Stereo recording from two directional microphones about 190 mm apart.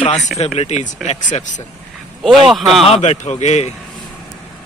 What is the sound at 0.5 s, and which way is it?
Speech, 35° left (ahead or behind).